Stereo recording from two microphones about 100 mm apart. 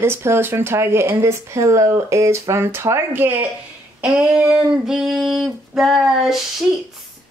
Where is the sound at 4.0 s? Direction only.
15° right (ahead or behind).